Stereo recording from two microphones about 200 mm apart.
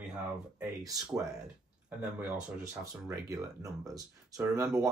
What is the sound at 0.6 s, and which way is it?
Speech, 15° right (ahead or behind).